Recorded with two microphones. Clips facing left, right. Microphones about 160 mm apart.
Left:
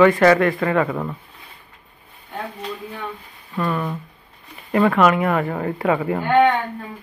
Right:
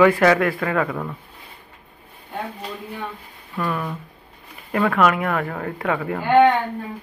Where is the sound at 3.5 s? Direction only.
Centre (ahead or behind).